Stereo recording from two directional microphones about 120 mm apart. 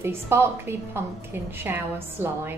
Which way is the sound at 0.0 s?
20° right (ahead or behind).